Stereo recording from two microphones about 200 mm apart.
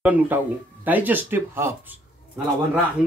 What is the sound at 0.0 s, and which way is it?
Speech, 5° right (ahead or behind).